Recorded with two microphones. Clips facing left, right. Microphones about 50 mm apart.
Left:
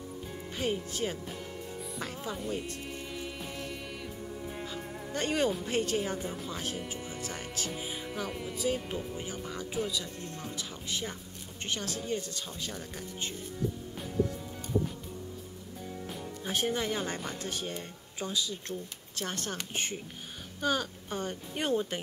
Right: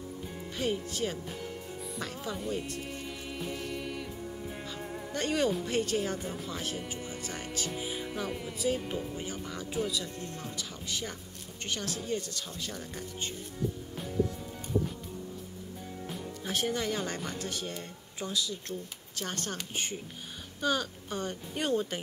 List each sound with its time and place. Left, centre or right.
0.6 s speech: centre
1.2 s speech: centre
2.1 s music: centre
5.1 s speech: centre
6.2 s speech: centre
6.9 s speech: left
7.4 s speech: centre
9.1 s speech: centre
10.5 s speech: centre
16.5 s speech: centre
20.6 s speech: centre